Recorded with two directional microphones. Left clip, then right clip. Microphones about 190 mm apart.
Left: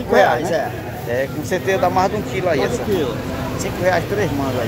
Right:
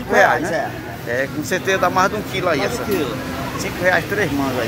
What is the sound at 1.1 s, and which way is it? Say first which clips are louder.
A man's voice: even; centre (ahead or behind).